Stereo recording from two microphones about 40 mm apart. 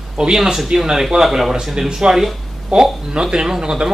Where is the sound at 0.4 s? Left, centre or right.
Centre.